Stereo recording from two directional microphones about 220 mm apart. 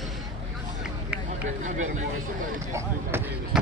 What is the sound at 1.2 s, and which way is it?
Speech, 35° right (ahead or behind).